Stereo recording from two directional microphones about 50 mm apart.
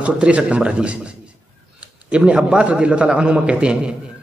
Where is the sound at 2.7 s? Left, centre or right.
Right.